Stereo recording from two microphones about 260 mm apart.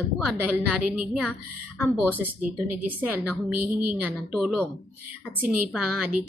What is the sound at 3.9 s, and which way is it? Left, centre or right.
Speech, centre.